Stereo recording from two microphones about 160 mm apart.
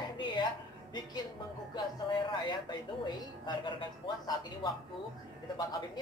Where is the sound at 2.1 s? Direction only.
30° left (ahead or behind).